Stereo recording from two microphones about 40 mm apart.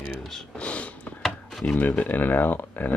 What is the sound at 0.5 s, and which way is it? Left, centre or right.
Speech, left.